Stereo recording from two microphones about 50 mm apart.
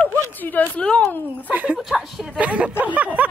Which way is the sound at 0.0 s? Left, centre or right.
Left.